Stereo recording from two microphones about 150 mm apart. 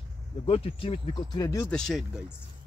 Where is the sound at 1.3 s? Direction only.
20° left (ahead or behind).